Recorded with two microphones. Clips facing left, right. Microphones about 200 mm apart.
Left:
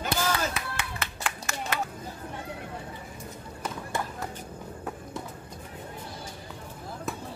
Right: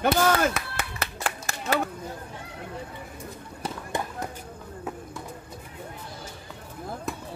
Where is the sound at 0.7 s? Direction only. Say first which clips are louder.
Right 2 dB; 40° right (ahead or behind).